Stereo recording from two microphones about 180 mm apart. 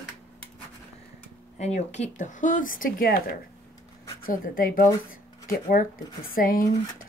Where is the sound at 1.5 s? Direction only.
40° left (ahead or behind).